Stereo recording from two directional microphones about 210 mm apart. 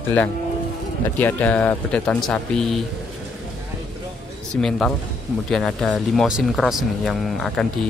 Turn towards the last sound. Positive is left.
turn(degrees=0)  # may be behind; listen again after turning